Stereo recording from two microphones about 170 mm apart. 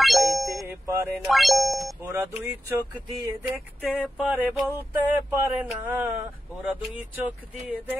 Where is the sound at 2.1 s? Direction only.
15° right (ahead or behind).